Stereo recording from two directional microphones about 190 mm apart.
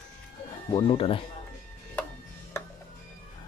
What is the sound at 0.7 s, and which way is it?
Speech, 25° left (ahead or behind).